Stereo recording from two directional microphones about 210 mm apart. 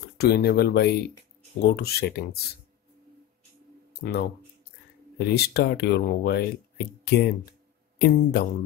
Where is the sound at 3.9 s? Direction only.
50° left (ahead or behind).